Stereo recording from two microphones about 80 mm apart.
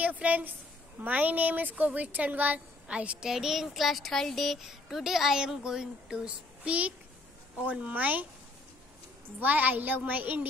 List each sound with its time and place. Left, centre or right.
0.0 s a woman's voice: centre
9.4 s a woman's voice: right